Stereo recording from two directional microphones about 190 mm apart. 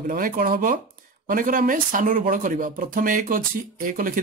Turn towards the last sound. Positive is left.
turn(degrees=-45)  # may be behind; listen again after turning